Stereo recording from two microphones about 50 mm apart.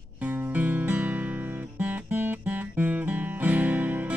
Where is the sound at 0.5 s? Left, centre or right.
Right.